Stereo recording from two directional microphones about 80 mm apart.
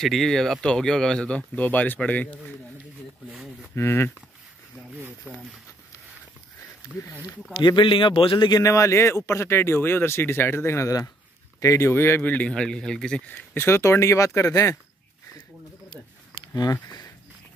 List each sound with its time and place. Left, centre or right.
0.0 s speech: centre
3.7 s speech: left
5.3 s speech: centre
7.5 s speech: left
8.5 s speech: left
11.9 s speech: left; by 13.2 s centre
13.3 s speech: left